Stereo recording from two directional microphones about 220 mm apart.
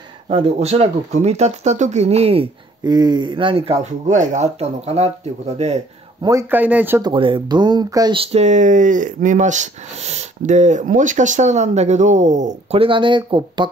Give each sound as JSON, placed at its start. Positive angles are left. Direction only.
{"t": 0.3, "sound": "speech", "side_deg": -25}
{"t": 6.2, "sound": "speech", "side_deg": -10}
{"t": 7.1, "sound": "speech", "side_deg": -20}